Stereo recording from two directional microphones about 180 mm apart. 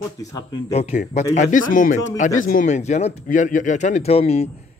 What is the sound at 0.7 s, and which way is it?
Speech, 35° left (ahead or behind).